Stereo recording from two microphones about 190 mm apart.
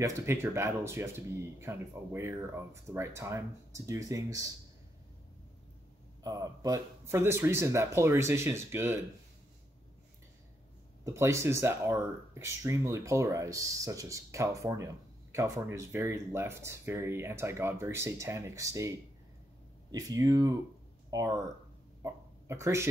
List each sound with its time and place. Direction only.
0.0 s speech: 15° right (ahead or behind)
6.2 s speech: 20° right (ahead or behind)
11.1 s speech: 15° right (ahead or behind)
22.0 s dog: 15° right (ahead or behind)